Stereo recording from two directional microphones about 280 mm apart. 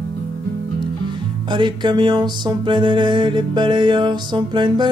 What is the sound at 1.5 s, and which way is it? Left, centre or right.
Music, centre.